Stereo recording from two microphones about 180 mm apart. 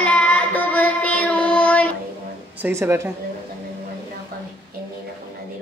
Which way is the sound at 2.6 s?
15° right (ahead or behind).